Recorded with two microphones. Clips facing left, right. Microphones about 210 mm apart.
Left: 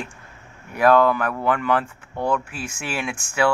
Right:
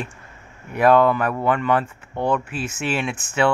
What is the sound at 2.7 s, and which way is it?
Speech, 10° left (ahead or behind).